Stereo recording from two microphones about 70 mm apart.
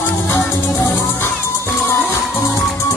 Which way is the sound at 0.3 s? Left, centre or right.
Left.